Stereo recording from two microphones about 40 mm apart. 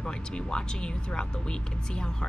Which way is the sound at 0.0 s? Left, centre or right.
Left.